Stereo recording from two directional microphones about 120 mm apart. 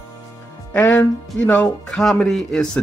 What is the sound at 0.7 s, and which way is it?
Speech, 15° left (ahead or behind).